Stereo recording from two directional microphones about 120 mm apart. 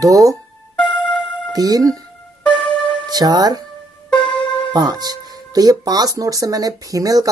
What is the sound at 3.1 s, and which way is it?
Speech, 35° right (ahead or behind).